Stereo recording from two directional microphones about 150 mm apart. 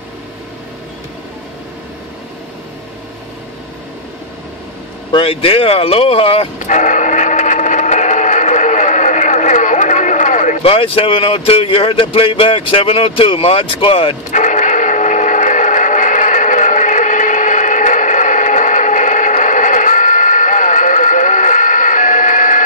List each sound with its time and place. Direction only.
5.1 s bow-wow: 40° left (ahead or behind); by 10.6 s 55° left (ahead or behind)
10.6 s speech: 40° left (ahead or behind)
14.3 s a sound: 55° left (ahead or behind)